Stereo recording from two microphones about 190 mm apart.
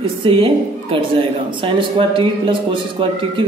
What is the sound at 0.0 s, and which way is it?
A woman's voice, 25° right (ahead or behind).